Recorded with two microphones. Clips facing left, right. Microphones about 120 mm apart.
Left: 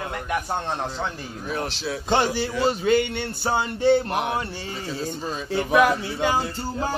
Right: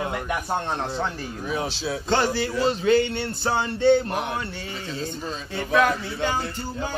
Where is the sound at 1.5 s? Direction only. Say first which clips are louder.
Even; centre (ahead or behind).